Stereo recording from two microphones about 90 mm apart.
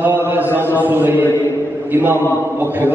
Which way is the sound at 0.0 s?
20° right (ahead or behind).